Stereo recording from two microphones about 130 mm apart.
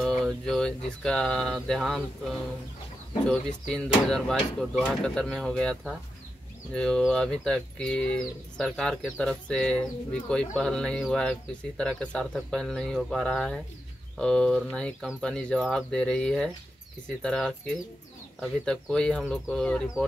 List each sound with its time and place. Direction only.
0.0 s a sound: centre (ahead or behind)
0.5 s speech: 5° left (ahead or behind)
3.3 s speech: 5° left (ahead or behind)